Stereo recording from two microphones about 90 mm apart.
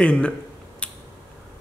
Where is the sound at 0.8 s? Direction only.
10° left (ahead or behind).